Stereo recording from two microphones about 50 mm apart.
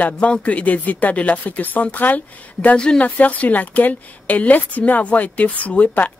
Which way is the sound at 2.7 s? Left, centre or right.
Centre.